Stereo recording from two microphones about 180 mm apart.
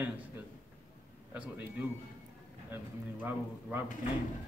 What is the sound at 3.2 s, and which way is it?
Speech, 10° right (ahead or behind).